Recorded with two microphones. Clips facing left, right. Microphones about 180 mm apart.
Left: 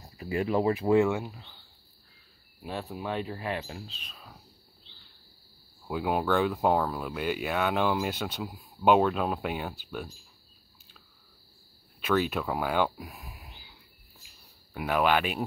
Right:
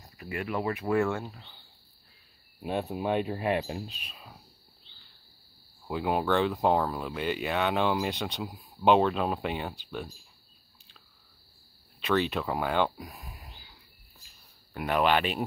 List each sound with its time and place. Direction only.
0.2 s speech: 30° left (ahead or behind); by 1.3 s 15° left (ahead or behind)
2.6 s speech: 20° right (ahead or behind)
5.9 s speech: centre (ahead or behind)
12.0 s speech: 5° left (ahead or behind)